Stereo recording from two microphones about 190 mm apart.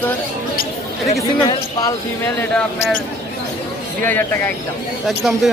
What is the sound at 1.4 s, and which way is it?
Speech, 20° left (ahead or behind).